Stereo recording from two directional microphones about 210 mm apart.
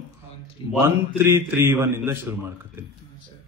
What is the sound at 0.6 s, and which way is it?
Speech, 25° left (ahead or behind).